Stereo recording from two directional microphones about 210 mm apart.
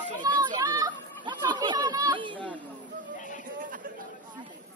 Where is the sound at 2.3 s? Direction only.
5° left (ahead or behind).